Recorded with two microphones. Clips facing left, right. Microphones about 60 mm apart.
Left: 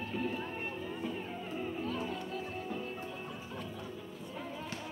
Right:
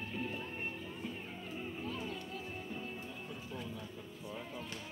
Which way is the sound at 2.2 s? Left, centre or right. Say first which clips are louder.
Left 5 dB; left.